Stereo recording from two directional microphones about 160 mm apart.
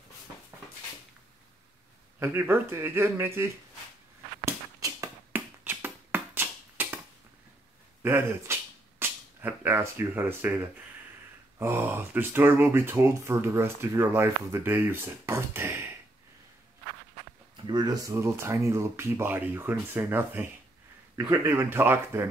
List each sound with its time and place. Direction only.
2.1 s speech: 15° right (ahead or behind)
4.5 s finger snapping: 20° right (ahead or behind)
8.0 s speech: 15° right (ahead or behind)
17.6 s speech: 25° right (ahead or behind)